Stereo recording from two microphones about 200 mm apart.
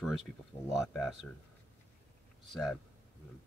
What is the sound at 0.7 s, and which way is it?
Speech, centre (ahead or behind).